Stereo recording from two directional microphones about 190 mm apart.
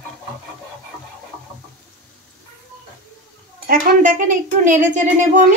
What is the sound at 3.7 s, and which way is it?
Speech, 45° right (ahead or behind).